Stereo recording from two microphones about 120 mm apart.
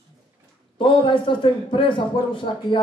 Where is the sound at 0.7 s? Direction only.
45° left (ahead or behind).